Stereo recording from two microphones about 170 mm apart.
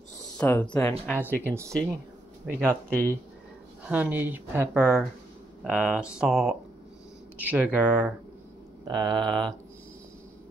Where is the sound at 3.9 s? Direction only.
10° right (ahead or behind).